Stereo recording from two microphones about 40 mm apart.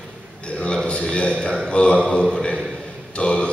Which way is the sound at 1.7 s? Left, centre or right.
Left.